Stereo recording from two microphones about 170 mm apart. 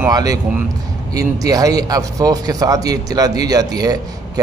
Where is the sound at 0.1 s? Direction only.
20° right (ahead or behind).